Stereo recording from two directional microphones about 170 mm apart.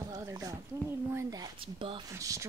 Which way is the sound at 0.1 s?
20° right (ahead or behind).